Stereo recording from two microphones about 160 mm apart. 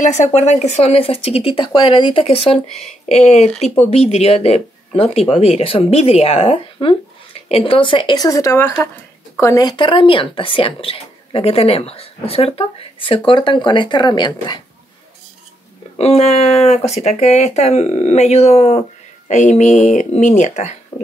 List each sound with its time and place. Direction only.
0.0 s speech: 50° left (ahead or behind); by 14.6 s 30° left (ahead or behind)
16.0 s speech: 40° left (ahead or behind)
20.9 s a sound: 15° left (ahead or behind)